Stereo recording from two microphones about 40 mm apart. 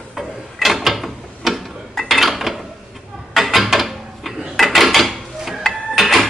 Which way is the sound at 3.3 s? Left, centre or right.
Centre.